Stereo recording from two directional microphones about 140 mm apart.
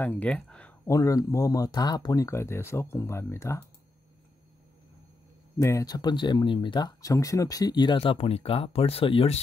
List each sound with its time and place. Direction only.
0.0 s speech: 10° left (ahead or behind)
0.8 s speech: 20° left (ahead or behind)
5.6 s speech: 20° left (ahead or behind); by 9.4 s 40° left (ahead or behind)